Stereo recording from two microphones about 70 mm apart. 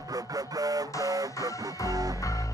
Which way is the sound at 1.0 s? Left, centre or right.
Right.